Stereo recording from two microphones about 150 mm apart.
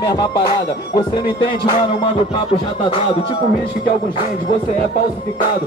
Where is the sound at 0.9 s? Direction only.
25° left (ahead or behind).